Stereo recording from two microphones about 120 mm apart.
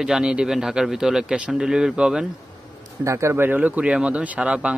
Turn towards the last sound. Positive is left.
turn(degrees=-10)  # may be behind; listen again after turning